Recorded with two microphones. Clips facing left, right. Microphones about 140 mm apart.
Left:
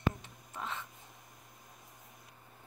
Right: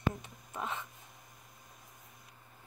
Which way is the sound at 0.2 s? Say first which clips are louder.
Right 3 dB; 15° right (ahead or behind).